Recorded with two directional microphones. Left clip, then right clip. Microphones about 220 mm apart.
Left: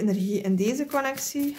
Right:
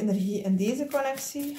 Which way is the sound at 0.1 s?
40° left (ahead or behind).